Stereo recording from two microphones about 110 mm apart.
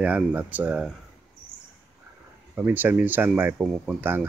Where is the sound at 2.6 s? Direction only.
15° right (ahead or behind).